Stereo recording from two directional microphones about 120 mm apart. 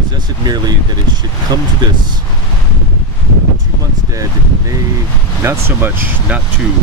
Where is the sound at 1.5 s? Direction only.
35° right (ahead or behind).